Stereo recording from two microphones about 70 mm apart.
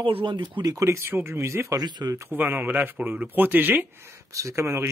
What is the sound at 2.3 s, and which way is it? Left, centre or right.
Speech, right.